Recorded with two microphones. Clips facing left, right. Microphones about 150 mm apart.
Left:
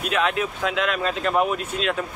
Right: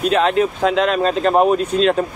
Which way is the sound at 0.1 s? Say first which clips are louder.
Right 5 dB; 35° right (ahead or behind).